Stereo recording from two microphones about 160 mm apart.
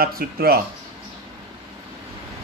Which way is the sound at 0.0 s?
70° right (ahead or behind).